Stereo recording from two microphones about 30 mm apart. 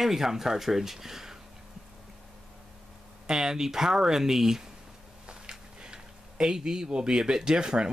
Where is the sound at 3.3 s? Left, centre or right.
Centre.